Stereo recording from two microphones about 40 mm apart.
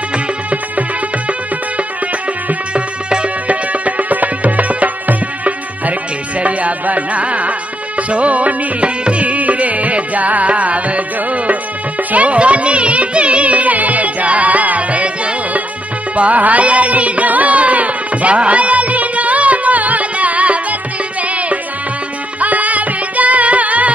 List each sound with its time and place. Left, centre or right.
2.7 s music: right
3.8 s music: right
12.1 s music: right
22.4 s music: right